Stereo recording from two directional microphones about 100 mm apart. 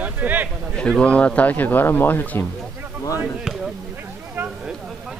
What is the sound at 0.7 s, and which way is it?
Speech, 10° left (ahead or behind).